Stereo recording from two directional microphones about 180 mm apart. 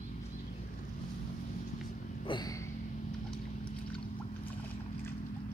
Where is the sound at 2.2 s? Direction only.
25° left (ahead or behind).